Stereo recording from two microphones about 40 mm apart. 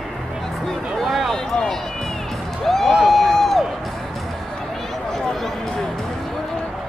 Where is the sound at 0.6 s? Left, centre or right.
Centre.